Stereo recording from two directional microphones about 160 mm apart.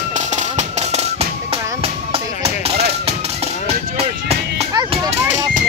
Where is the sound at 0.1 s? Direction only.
50° right (ahead or behind).